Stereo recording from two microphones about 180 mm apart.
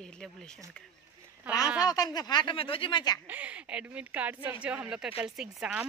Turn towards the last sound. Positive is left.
turn(degrees=-5)  # may be behind; listen again after turning